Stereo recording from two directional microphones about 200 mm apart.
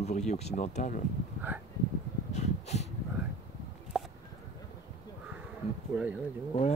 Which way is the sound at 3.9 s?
Centre (ahead or behind).